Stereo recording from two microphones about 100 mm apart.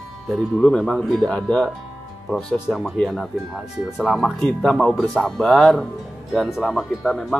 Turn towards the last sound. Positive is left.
turn(degrees=0)  # may be behind; listen again after turning